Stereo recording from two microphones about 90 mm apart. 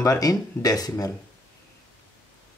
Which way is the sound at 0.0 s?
40° left (ahead or behind).